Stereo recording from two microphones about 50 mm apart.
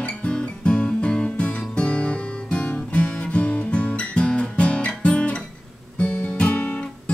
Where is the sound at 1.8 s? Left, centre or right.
Left.